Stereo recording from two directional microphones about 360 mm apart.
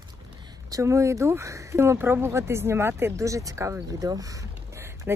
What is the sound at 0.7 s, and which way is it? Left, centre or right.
Speech, centre.